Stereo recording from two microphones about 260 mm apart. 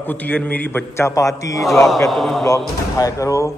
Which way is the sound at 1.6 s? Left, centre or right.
Centre.